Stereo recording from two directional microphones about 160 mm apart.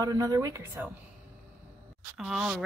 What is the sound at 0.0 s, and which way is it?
Speech, 20° right (ahead or behind).